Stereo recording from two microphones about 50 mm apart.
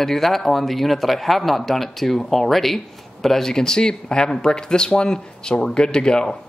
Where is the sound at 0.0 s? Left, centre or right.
Centre.